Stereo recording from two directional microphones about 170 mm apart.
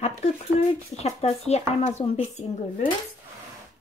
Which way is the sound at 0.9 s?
40° left (ahead or behind).